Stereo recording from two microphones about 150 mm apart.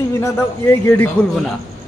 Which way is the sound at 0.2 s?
15° left (ahead or behind).